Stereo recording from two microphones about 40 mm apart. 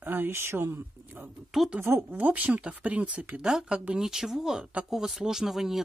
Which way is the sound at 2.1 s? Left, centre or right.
Right.